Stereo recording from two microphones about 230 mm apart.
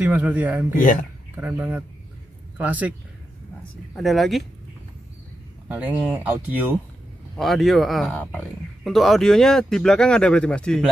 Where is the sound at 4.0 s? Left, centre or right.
Centre.